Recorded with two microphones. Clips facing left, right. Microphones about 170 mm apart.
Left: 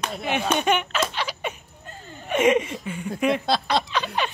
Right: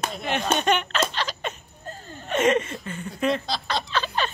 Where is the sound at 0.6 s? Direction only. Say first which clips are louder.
Even; 10° left (ahead or behind).